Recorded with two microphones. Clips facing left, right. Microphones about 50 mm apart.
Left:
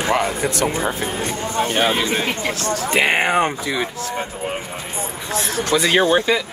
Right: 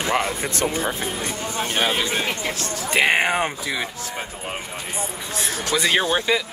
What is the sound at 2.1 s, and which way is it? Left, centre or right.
Speech, left.